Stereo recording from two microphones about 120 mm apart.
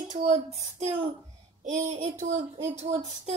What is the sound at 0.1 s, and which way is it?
Child singing, 80° right.